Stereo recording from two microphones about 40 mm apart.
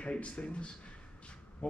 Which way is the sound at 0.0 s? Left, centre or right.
Left.